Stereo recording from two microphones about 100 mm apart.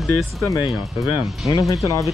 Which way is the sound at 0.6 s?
55° left (ahead or behind).